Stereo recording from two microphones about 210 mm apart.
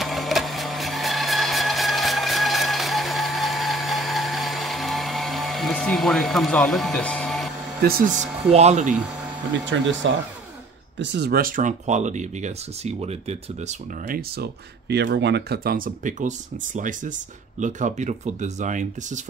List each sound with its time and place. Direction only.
0.0 s a sound: centre (ahead or behind)
7.8 s speech: 40° right (ahead or behind)
8.5 s speech: 30° right (ahead or behind)
9.5 s speech: 60° right (ahead or behind); by 19.2 s 35° right (ahead or behind)